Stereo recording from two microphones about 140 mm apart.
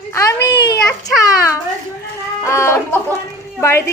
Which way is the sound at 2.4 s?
20° left (ahead or behind).